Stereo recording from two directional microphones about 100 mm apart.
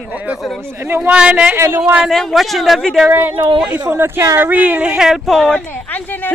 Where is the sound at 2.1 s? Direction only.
Centre (ahead or behind).